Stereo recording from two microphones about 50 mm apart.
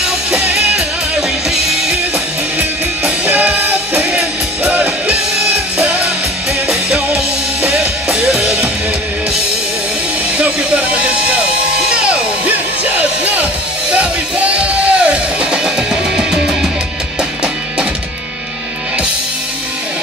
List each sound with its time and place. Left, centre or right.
0.3 s music: right
3.0 s music: right
10.3 s music: right
12.4 s music: right
15.6 s music: centre